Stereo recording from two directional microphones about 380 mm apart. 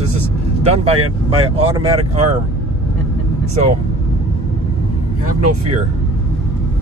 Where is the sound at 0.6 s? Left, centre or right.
Centre.